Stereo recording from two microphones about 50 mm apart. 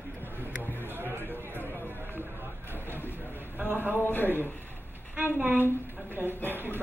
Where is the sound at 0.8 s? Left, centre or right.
Right.